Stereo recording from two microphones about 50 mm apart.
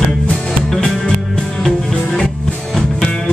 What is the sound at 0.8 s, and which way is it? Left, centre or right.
Music, left.